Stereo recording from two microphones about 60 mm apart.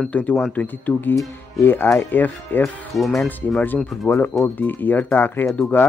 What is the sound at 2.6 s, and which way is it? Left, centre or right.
Speech, centre.